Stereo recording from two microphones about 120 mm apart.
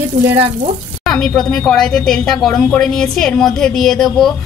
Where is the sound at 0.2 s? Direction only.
15° right (ahead or behind).